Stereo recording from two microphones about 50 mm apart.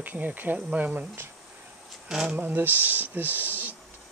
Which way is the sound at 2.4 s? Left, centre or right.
Right.